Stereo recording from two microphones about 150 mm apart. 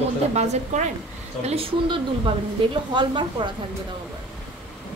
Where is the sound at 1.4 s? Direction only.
40° right (ahead or behind).